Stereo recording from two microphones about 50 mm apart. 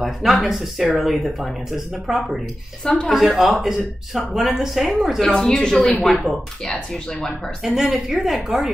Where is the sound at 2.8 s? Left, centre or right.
Centre.